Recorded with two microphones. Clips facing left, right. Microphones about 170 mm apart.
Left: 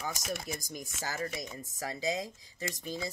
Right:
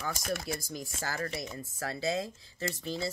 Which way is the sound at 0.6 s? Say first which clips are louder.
Right 2 dB; 15° left (ahead or behind).